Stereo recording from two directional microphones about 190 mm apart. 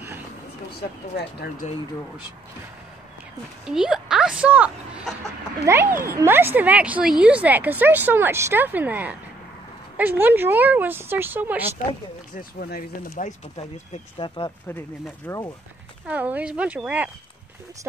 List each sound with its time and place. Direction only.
0.7 s speech: 55° left (ahead or behind)
3.6 s a woman's voice: 5° right (ahead or behind)
12.4 s speech: 50° left (ahead or behind)
13.1 s speech: 35° left (ahead or behind)
14.1 s speech: 25° left (ahead or behind)
16.1 s a woman's voice: 10° right (ahead or behind)